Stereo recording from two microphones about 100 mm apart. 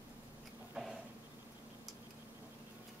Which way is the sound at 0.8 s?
10° right (ahead or behind).